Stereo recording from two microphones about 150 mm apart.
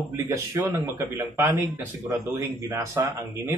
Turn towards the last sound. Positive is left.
turn(degrees=-20)  # may be behind; listen again after turning